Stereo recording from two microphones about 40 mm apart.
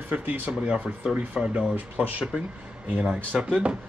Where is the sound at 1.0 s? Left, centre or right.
Right.